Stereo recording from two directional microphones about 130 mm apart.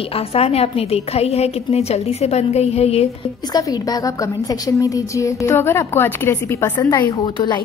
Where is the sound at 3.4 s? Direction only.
30° left (ahead or behind).